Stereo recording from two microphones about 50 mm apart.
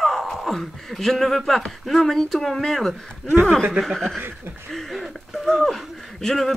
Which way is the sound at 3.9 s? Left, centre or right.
Centre.